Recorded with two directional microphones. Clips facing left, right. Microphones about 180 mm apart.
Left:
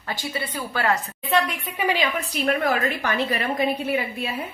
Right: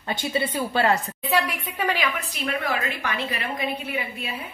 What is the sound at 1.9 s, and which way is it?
A woman's voice, 35° left (ahead or behind).